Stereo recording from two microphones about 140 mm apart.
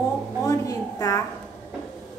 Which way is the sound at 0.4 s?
25° left (ahead or behind).